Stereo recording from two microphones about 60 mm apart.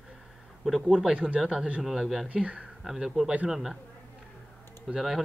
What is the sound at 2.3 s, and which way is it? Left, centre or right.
Speech, centre.